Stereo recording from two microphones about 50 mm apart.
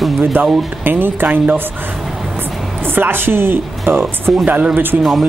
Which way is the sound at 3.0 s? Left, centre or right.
Right.